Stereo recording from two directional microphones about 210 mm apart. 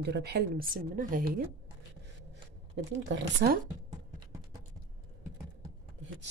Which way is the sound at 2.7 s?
50° right (ahead or behind).